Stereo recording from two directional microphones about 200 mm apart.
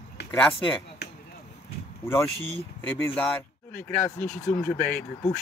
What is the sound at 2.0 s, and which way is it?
Speech, 10° left (ahead or behind).